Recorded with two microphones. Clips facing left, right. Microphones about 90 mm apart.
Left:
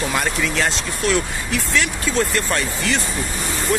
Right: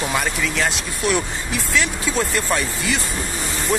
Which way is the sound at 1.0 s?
15° right (ahead or behind).